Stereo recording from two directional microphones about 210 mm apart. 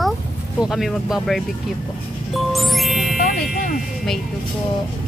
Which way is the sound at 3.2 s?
40° left (ahead or behind).